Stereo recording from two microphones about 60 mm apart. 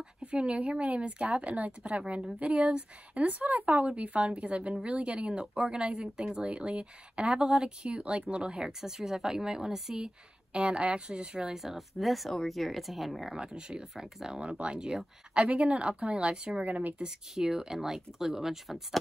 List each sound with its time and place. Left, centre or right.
0.2 s speech: centre
11.5 s speech: centre
13.4 s speech: centre
16.6 s speech: right
17.0 s speech: centre